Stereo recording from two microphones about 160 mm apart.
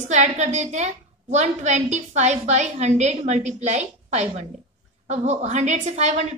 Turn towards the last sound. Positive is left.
turn(degrees=-45)  # may be behind; listen again after turning